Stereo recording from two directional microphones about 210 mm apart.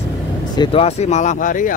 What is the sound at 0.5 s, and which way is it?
Speech, 25° left (ahead or behind).